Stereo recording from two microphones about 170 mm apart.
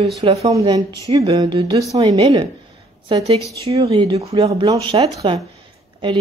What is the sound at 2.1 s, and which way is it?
Speech, 35° right (ahead or behind).